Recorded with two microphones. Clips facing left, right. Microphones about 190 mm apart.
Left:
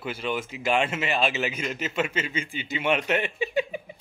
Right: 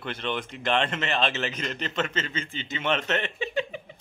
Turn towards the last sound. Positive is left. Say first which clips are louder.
# left 2 dB
turn(degrees=10)  # may be behind; listen again after turning